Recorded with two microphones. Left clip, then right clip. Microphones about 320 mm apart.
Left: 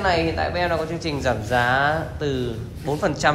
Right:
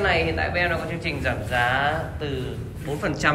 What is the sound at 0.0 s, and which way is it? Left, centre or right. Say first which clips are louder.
Speech: left 1 dB; centre.